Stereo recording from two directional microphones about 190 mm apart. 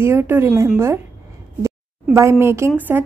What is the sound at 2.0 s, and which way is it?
Speech, 15° right (ahead or behind).